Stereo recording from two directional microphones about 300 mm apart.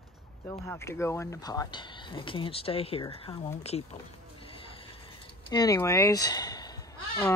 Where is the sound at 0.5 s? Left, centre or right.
Centre.